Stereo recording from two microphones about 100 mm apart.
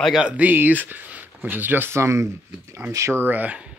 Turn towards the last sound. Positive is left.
turn(degrees=-15)  # may be behind; listen again after turning